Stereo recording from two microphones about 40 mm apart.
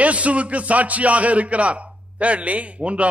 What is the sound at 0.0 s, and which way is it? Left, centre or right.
Speech, right.